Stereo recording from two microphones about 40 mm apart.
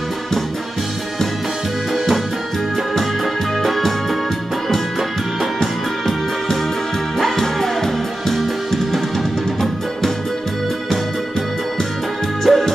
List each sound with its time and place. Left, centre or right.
5.4 s music: centre
12.4 s music: centre